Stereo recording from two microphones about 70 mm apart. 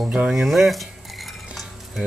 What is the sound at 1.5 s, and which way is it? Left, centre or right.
Stir, centre.